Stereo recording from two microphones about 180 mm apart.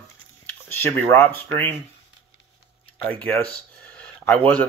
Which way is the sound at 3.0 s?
10° left (ahead or behind).